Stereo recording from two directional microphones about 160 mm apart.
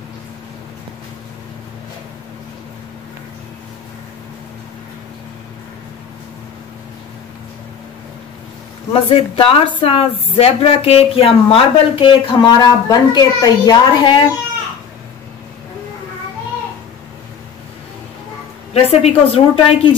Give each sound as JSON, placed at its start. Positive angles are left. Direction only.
{"t": 8.9, "sound": "a woman's voice", "side_deg": 35}
{"t": 18.7, "sound": "a woman's voice", "side_deg": 40}